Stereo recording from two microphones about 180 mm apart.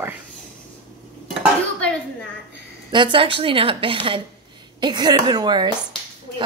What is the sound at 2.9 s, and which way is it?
A woman's voice, 25° right (ahead or behind).